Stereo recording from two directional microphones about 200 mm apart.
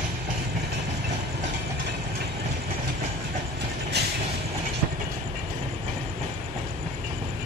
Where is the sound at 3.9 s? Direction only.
55° right (ahead or behind).